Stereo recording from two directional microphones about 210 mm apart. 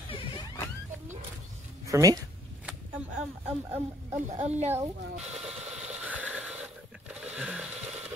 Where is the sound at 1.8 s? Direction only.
15° right (ahead or behind).